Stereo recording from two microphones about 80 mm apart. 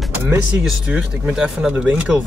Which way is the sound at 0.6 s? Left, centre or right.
Centre.